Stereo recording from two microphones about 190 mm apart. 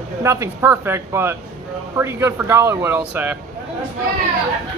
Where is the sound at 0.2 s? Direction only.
15° right (ahead or behind).